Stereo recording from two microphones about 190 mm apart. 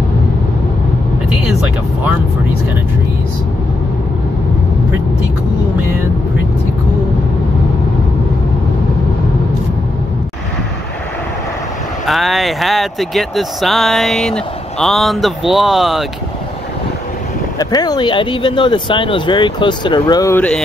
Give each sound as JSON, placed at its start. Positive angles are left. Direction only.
{"t": 1.5, "sound": "speech", "side_deg": -5}
{"t": 12.1, "sound": "speech", "side_deg": 0}
{"t": 17.6, "sound": "speech", "side_deg": 20}